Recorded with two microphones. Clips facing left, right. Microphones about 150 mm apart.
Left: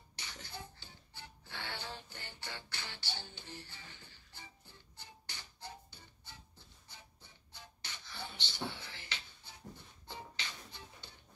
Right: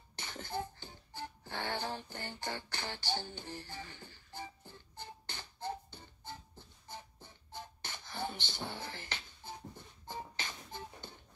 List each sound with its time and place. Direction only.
0.1 s music: 50° right (ahead or behind)